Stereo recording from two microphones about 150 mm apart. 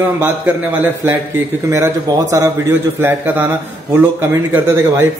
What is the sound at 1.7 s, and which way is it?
A man's voice, 20° right (ahead or behind).